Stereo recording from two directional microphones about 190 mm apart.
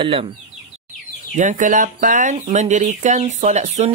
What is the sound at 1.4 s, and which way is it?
Speech, 40° right (ahead or behind).